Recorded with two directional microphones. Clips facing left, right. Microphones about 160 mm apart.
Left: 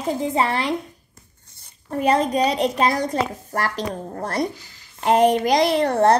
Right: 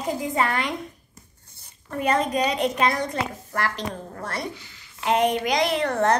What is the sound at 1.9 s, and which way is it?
A woman's voice, 35° left (ahead or behind).